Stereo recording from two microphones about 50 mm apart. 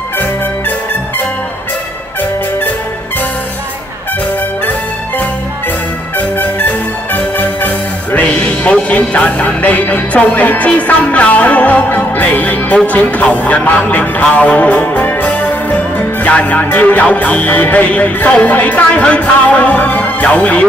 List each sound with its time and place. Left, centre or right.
0.2 s music: left
6.1 s music: left